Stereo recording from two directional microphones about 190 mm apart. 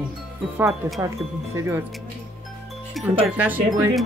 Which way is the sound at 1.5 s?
15° right (ahead or behind).